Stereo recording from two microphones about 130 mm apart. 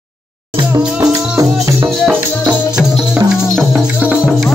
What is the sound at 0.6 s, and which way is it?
Music, 30° right (ahead or behind).